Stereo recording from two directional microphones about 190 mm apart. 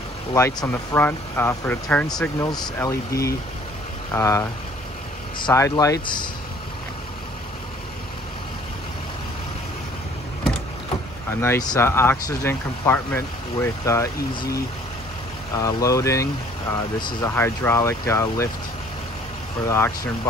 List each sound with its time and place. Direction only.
0.3 s speech: 20° left (ahead or behind)
11.4 s speech: 15° left (ahead or behind)
15.5 s speech: 15° left (ahead or behind)
19.6 s speech: 15° left (ahead or behind)